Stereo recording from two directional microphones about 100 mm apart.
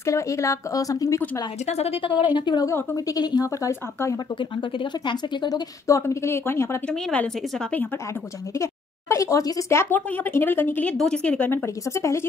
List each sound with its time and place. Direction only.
0.0 s a woman's voice: 30° left (ahead or behind)
1.7 s a woman's voice: 85° left; by 2.2 s 60° left (ahead or behind)
2.3 s speech: 50° left (ahead or behind)
2.6 s speech: 30° left (ahead or behind)
3.2 s a woman's voice: 40° left (ahead or behind)
4.4 s speech: 55° left (ahead or behind)
5.9 s speech: 30° left (ahead or behind)
6.9 s speech: 10° left (ahead or behind)
9.1 s a woman's voice: 30° left (ahead or behind)
9.7 s speech: 25° left (ahead or behind)
11.6 s speech: 30° left (ahead or behind)